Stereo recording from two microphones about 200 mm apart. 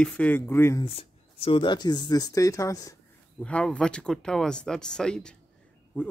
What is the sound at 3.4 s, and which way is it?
Speech, 5° left (ahead or behind).